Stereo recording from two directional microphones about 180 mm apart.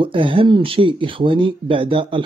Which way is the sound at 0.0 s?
30° right (ahead or behind).